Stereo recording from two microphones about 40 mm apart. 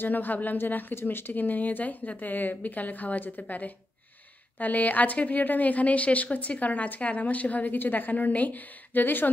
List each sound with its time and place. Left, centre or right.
0.0 s a woman's voice: left
0.9 s a woman's voice: left